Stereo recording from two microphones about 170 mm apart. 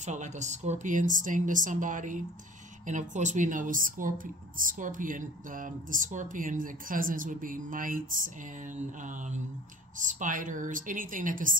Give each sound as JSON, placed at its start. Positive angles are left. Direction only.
{"t": 0.0, "sound": "speech", "side_deg": -45}